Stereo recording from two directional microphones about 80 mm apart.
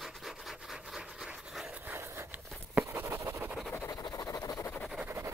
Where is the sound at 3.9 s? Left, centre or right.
Left.